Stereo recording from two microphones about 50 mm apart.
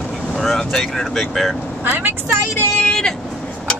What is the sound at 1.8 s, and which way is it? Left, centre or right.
Speech, right.